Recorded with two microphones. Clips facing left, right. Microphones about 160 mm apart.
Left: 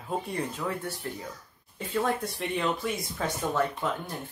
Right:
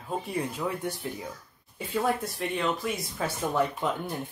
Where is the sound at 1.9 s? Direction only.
Centre (ahead or behind).